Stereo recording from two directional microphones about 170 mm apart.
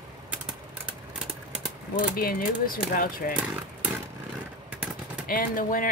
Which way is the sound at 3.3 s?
5° right (ahead or behind).